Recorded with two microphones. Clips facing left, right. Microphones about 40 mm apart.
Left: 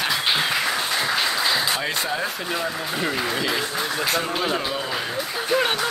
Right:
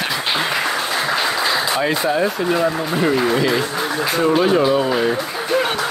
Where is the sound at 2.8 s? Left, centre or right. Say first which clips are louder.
Right 7 dB; centre.